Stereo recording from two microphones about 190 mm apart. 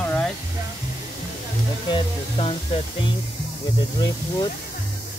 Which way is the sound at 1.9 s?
30° left (ahead or behind).